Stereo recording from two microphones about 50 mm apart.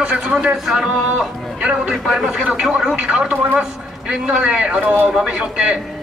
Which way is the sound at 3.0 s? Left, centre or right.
Right.